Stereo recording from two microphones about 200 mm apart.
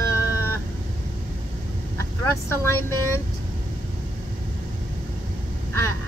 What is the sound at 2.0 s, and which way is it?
Speech, 15° left (ahead or behind).